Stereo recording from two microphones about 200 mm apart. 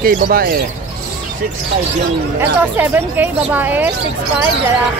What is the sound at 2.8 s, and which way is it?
Speech, 10° right (ahead or behind).